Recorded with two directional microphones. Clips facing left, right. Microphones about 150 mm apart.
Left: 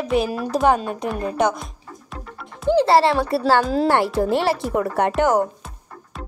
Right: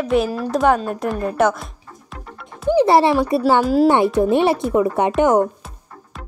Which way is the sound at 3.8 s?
15° right (ahead or behind).